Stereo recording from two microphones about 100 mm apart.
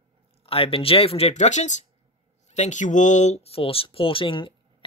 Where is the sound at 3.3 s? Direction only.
80° left; by 4.5 s 60° left (ahead or behind).